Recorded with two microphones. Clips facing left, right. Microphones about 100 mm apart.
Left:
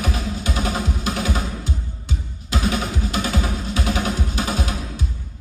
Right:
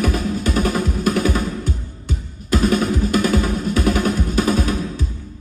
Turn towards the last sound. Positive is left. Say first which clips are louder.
# right 6 dB
turn(degrees=-45)  # may be behind; listen again after turning